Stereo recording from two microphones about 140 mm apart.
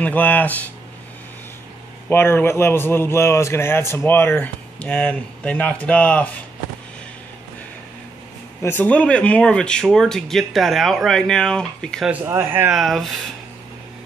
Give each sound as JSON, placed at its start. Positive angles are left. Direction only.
{"t": 0.0, "sound": "a man's voice", "side_deg": 15}
{"t": 2.0, "sound": "a man's voice", "side_deg": 15}
{"t": 8.6, "sound": "speech", "side_deg": 10}
{"t": 12.1, "sound": "speech", "side_deg": -15}
{"t": 12.7, "sound": "speech", "side_deg": 0}